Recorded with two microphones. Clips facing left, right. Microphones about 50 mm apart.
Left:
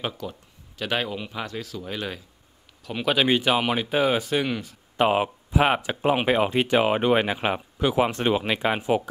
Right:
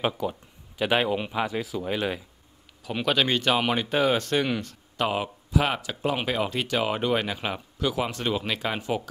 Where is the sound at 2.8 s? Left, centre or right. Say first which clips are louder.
Left 2 dB; centre.